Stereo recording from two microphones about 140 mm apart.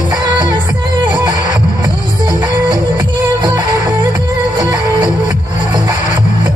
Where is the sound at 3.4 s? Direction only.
30° right (ahead or behind).